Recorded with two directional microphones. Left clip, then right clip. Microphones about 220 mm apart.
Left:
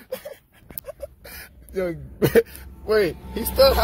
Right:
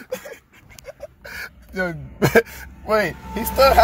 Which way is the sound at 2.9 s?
10° right (ahead or behind).